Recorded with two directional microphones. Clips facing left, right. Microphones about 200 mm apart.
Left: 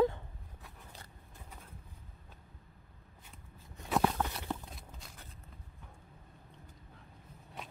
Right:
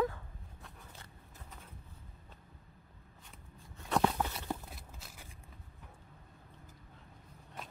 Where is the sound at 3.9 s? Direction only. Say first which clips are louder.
Even; centre (ahead or behind).